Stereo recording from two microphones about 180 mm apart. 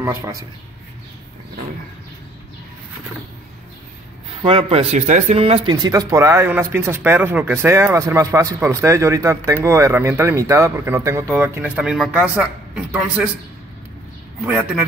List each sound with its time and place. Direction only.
0.0 s speech: 15° right (ahead or behind)
4.4 s speech: 30° right (ahead or behind); by 13.3 s 5° right (ahead or behind)